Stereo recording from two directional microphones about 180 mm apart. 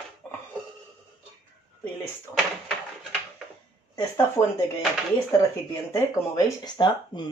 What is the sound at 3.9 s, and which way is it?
Speech, 15° left (ahead or behind).